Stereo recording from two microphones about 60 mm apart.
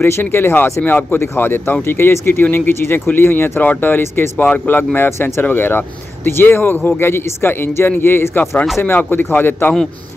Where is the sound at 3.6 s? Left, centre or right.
Left.